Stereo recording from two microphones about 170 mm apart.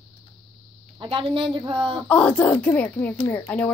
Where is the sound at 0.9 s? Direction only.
30° right (ahead or behind).